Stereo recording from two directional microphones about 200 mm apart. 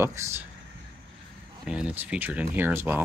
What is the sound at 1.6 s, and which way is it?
Speech, 5° right (ahead or behind).